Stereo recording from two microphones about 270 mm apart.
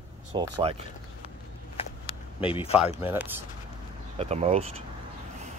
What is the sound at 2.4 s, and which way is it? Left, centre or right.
Speech, centre.